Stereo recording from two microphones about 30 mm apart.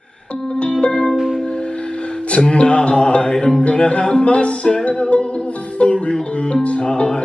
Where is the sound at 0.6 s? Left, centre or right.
Left.